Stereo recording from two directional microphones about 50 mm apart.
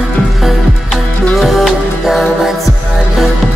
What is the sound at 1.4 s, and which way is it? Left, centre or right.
Music, centre.